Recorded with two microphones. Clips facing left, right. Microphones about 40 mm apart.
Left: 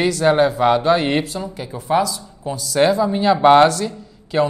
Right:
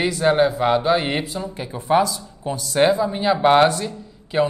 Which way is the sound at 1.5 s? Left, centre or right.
Right.